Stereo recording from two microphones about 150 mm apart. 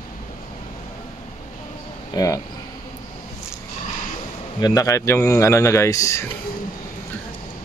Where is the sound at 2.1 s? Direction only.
20° left (ahead or behind).